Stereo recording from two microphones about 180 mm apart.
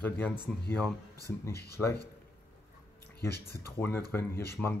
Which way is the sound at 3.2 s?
15° left (ahead or behind).